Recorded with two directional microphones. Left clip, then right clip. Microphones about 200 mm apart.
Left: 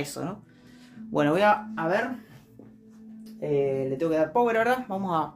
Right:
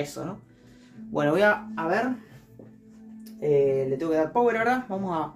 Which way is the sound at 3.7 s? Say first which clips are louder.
Right 1 dB; 30° left (ahead or behind).